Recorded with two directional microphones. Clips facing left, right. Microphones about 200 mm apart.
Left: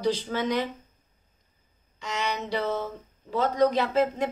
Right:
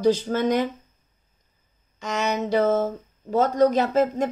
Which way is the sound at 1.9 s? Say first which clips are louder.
Right 6 dB; 45° right (ahead or behind).